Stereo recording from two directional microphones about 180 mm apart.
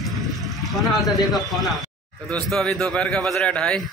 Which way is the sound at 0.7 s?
Centre (ahead or behind).